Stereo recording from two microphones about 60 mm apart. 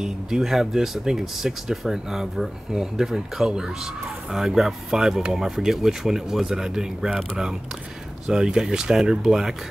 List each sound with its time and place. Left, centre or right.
0.0 s speech: centre